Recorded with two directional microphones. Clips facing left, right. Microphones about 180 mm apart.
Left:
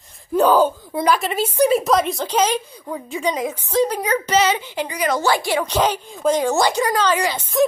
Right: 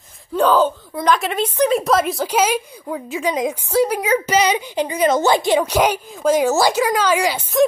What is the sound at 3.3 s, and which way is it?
A woman's voice, 15° right (ahead or behind).